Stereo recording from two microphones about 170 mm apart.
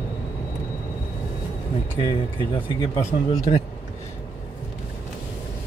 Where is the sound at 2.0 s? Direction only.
30° left (ahead or behind).